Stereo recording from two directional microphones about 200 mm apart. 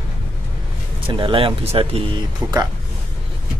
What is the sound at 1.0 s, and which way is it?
Speech, 25° right (ahead or behind).